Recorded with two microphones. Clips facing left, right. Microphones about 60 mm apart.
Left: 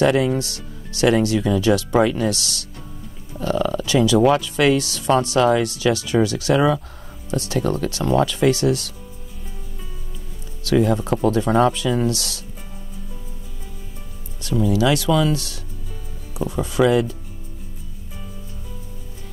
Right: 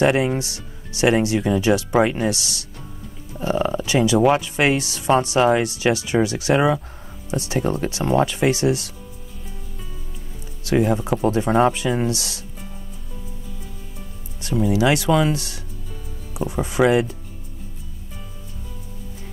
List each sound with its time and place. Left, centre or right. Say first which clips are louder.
0.0 s speech: left 1 dB; right
10.6 s speech: left 1 dB; right
11.2 s speech: even; right
14.4 s speech: even; right
15.0 s speech: even; right
15.3 s speech: left 2 dB; right